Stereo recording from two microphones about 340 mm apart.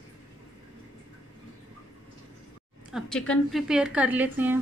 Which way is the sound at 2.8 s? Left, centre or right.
Centre.